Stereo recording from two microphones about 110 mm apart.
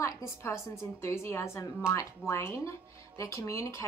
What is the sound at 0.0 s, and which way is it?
Speech, 25° left (ahead or behind).